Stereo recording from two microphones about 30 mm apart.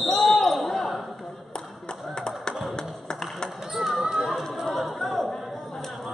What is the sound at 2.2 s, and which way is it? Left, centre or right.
Tap, left.